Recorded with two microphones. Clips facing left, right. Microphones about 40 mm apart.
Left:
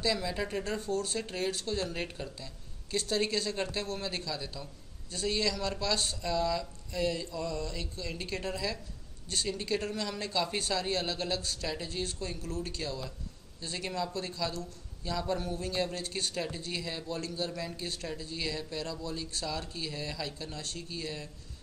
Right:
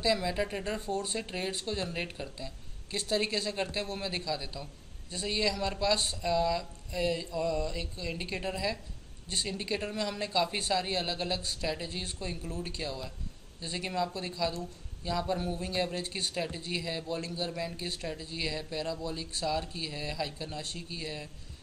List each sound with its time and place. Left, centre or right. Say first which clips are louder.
0.0 s speech: right 2 dB; centre